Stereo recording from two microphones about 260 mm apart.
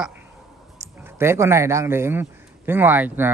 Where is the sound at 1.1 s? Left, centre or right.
Centre.